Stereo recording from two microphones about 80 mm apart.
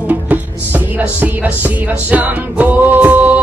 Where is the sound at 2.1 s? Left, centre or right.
Centre.